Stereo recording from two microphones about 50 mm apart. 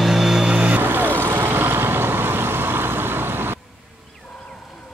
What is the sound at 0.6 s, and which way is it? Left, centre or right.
Vehicle, right.